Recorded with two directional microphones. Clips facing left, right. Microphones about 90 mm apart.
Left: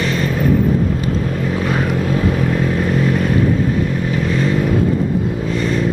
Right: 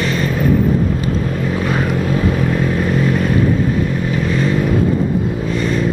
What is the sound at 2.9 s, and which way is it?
Vehicle, 20° right (ahead or behind).